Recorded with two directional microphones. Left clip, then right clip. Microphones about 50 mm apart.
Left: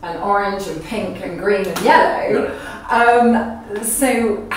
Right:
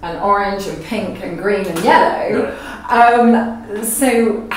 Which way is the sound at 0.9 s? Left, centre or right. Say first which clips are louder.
Right 2 dB; right.